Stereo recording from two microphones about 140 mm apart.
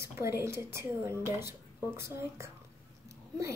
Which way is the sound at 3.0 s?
20° right (ahead or behind).